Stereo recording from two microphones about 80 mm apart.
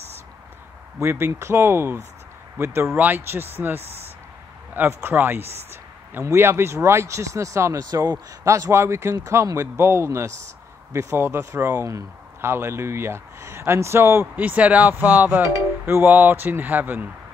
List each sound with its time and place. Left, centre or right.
1.0 s speech: right
7.8 s speech: right
14.3 s speech: centre